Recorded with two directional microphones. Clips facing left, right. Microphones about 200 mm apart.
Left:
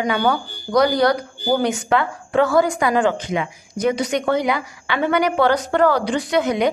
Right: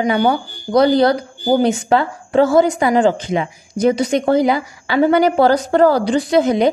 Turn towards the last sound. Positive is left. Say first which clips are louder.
# right 5 dB
turn(degrees=-30)  # may be behind; listen again after turning